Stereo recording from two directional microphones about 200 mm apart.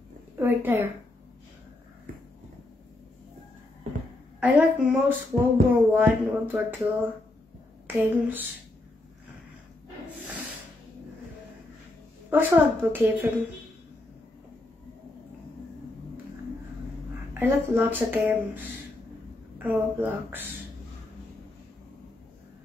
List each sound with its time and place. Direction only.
0.4 s a woman's voice: 10° right (ahead or behind)
4.4 s speech: 5° right (ahead or behind)
7.8 s a sound: 10° right (ahead or behind)
12.3 s speech: 10° right (ahead or behind)
17.3 s speech: 10° right (ahead or behind)
19.6 s speech: 10° right (ahead or behind)